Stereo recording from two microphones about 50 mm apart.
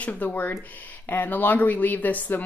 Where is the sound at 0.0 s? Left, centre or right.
Left.